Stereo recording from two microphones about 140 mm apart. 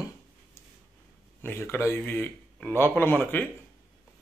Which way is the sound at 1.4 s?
15° left (ahead or behind).